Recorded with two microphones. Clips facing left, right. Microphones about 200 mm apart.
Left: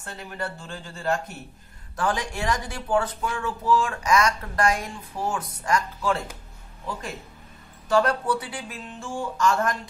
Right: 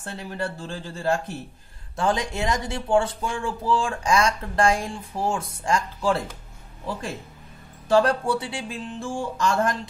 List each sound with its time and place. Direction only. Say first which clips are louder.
0.3 s speech: right 3 dB; 35° right (ahead or behind)
7.9 s speech: right 2 dB; 30° right (ahead or behind)